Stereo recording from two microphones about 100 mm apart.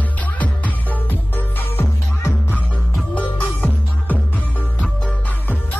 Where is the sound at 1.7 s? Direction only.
20° left (ahead or behind).